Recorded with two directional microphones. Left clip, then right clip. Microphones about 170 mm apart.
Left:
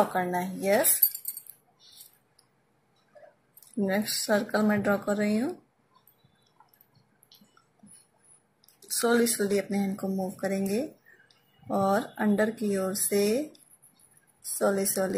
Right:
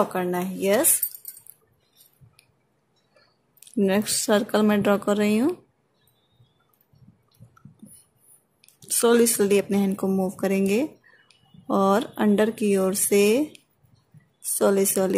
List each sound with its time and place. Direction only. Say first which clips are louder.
0.2 s speech: right 3 dB; 45° right (ahead or behind)
3.5 s speech: right 6 dB; 50° right (ahead or behind)
9.1 s speech: right 6 dB; 50° right (ahead or behind)
14.6 s a woman's voice: right 6 dB; 55° right (ahead or behind)